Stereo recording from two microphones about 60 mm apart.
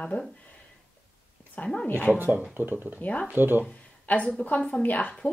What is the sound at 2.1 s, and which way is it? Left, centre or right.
Speech, right.